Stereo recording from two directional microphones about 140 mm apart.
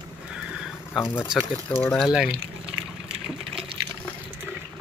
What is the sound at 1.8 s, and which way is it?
Speech, 5° left (ahead or behind).